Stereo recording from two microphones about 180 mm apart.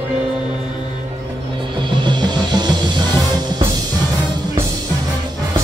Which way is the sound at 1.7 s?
25° right (ahead or behind).